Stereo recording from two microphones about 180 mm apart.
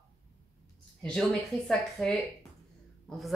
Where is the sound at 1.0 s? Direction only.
5° left (ahead or behind).